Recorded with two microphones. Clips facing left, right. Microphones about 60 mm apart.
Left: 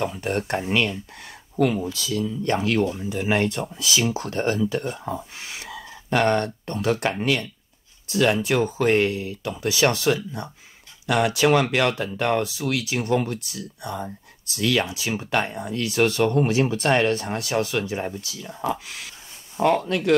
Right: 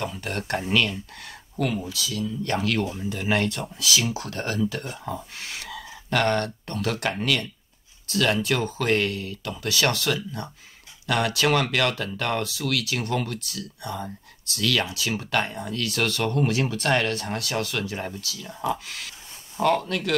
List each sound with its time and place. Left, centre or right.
0.0 s speech: left
1.9 s speech: left
19.5 s speech: centre
19.8 s speech: left